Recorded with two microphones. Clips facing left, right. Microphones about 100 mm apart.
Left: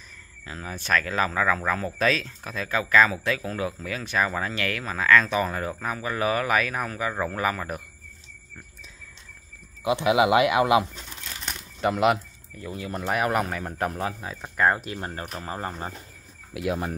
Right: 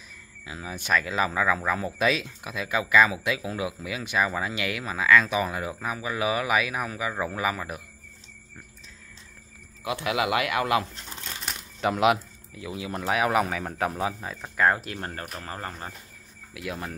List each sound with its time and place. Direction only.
0.1 s speech: 10° right (ahead or behind)
9.8 s speech: 20° left (ahead or behind)
11.4 s speech: centre (ahead or behind); by 16.9 s 25° left (ahead or behind)